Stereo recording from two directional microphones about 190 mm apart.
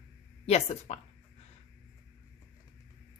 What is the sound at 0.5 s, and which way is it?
Speech, 35° left (ahead or behind).